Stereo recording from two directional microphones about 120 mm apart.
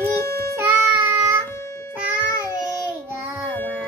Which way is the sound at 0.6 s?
20° right (ahead or behind).